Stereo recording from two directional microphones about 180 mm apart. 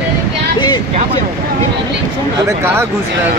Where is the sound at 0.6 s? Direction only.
25° left (ahead or behind).